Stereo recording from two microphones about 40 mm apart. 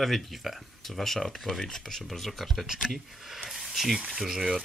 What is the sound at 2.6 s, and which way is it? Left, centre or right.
Speech, centre.